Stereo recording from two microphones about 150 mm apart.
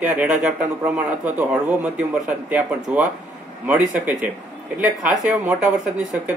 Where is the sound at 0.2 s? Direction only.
10° right (ahead or behind).